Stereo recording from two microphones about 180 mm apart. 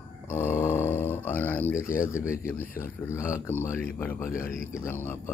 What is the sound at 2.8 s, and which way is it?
Speech, 15° left (ahead or behind).